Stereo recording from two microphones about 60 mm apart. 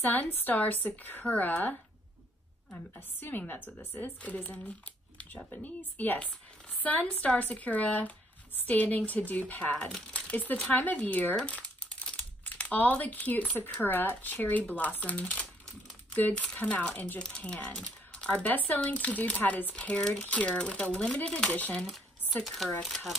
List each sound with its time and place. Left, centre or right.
0.0 s speech: left
3.2 s speech: left; by 21.5 s centre
21.7 s speech: centre